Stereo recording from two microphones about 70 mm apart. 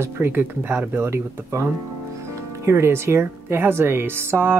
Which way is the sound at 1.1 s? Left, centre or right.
Right.